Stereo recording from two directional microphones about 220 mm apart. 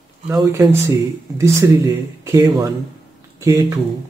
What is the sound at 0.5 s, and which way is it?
Speech, 15° right (ahead or behind).